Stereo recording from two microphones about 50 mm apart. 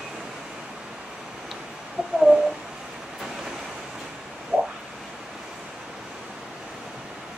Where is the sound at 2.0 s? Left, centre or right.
Centre.